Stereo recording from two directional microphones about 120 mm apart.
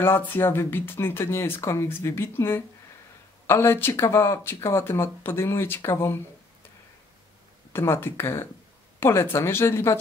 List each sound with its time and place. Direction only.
0.0 s speech: 20° left (ahead or behind)
7.7 s speech: 20° left (ahead or behind)